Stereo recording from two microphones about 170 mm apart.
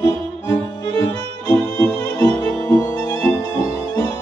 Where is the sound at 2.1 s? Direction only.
20° left (ahead or behind).